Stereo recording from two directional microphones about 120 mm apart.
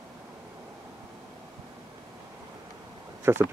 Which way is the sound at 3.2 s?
20° right (ahead or behind).